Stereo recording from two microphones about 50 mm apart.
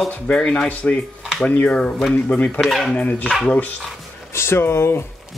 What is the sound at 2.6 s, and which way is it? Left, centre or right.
Speech, centre.